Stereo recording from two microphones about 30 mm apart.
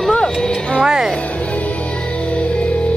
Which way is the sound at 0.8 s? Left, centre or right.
Right.